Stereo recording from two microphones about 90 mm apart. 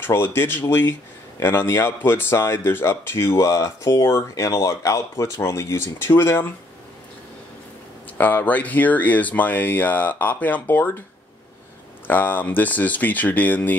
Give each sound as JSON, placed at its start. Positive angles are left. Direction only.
{"t": 0.0, "sound": "speech", "side_deg": 25}
{"t": 8.2, "sound": "speech", "side_deg": 20}
{"t": 12.1, "sound": "speech", "side_deg": 20}